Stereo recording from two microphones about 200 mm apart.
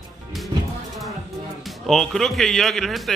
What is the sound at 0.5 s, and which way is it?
Music, 20° right (ahead or behind).